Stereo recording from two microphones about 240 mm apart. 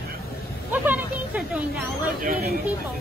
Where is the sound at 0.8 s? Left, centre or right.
Centre.